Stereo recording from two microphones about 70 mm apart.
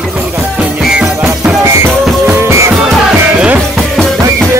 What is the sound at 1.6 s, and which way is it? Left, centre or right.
Music, right.